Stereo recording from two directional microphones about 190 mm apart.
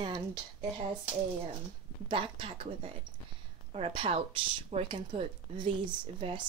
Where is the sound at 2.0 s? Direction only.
30° right (ahead or behind).